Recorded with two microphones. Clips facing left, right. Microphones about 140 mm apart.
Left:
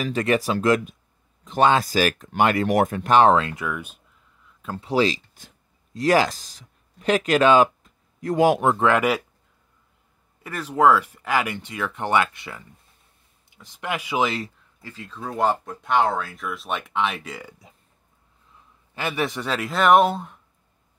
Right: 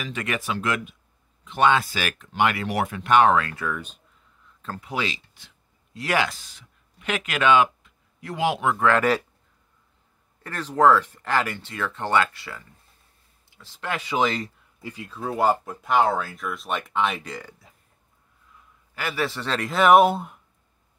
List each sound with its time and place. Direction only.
0.0 s speech: 35° left (ahead or behind)
3.4 s speech: 15° left (ahead or behind)
4.7 s speech: 30° left (ahead or behind)
8.7 s speech: 15° left (ahead or behind)
10.4 s speech: 10° left (ahead or behind)
14.8 s speech: 15° right (ahead or behind); by 17.6 s 5° left (ahead or behind)
18.9 s speech: 20° left (ahead or behind); by 20.3 s 10° right (ahead or behind)